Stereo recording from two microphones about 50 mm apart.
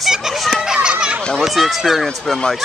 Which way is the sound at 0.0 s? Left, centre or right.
Centre.